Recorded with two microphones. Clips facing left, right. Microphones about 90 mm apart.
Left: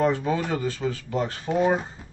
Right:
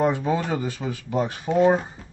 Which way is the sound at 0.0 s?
15° right (ahead or behind).